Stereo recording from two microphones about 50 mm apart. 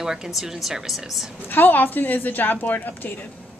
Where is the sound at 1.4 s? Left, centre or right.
Left.